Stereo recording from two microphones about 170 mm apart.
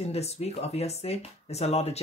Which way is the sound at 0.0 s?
40° left (ahead or behind).